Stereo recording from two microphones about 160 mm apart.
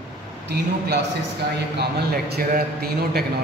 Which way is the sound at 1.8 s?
85° right.